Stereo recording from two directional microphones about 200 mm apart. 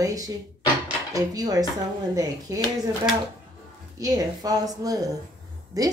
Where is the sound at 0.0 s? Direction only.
15° right (ahead or behind).